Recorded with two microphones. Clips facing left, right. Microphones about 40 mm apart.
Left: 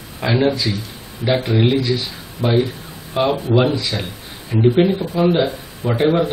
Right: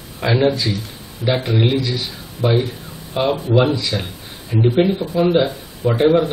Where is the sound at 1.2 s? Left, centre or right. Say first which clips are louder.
Left 1 dB; left.